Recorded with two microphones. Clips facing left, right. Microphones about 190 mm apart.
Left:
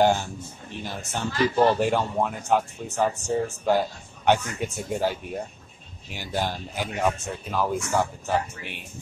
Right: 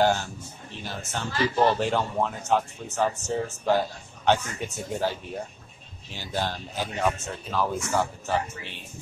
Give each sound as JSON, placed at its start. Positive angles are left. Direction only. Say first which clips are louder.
{"t": 0.0, "sound": "speech", "louder": "left 2 dB", "side_deg": 15}